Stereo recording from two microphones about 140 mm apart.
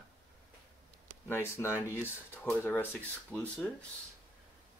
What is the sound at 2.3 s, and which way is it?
Speech, 15° left (ahead or behind).